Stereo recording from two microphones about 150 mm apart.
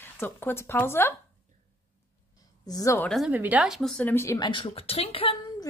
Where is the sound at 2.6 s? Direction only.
20° left (ahead or behind).